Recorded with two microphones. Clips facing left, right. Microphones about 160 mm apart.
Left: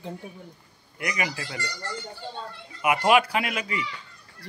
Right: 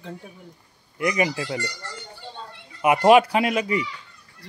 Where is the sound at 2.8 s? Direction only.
35° right (ahead or behind).